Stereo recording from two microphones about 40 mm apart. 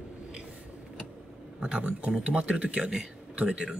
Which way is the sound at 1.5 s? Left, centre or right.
Right.